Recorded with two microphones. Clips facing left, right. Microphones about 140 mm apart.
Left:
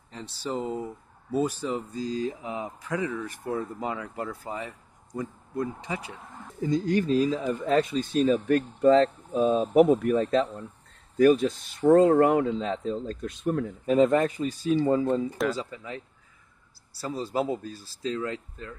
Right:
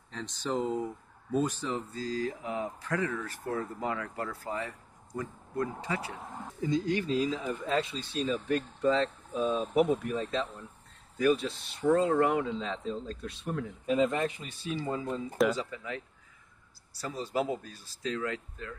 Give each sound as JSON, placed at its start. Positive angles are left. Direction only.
{"t": 0.1, "sound": "speech", "side_deg": 10}
{"t": 6.7, "sound": "speech", "side_deg": 45}